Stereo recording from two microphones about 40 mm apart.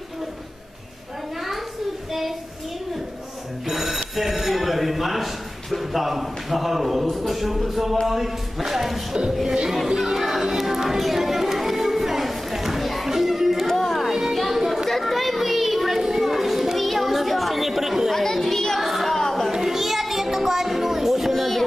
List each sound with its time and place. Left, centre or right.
3.6 s telephone bell ringing: centre
7.1 s speech: centre
9.5 s music: centre
9.9 s music: centre
14.1 s a sound: centre
14.9 s children playing: centre
18.1 s chatter: centre
19.5 s music: centre